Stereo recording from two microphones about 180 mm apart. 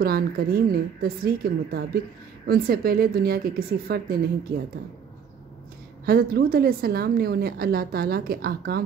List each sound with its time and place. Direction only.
0.0 s a woman's voice: 55° right (ahead or behind)
6.0 s a woman's voice: 55° right (ahead or behind)